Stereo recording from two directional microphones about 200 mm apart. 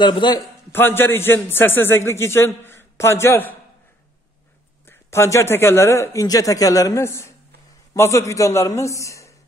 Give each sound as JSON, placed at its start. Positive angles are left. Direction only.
{"t": 0.0, "sound": "a man's voice", "side_deg": 20}
{"t": 4.8, "sound": "a man's voice", "side_deg": 10}